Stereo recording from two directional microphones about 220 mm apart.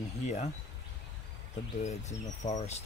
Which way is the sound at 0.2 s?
30° left (ahead or behind).